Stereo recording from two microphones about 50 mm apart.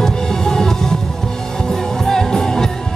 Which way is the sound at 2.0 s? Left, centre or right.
Centre.